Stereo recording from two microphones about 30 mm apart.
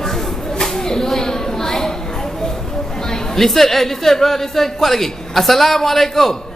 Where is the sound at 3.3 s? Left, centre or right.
Centre.